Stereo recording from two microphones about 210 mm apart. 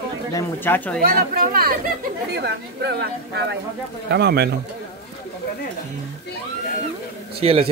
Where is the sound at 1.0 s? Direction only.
45° right (ahead or behind).